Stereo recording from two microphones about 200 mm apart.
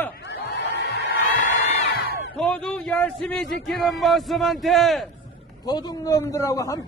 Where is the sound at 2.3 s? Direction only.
5° left (ahead or behind).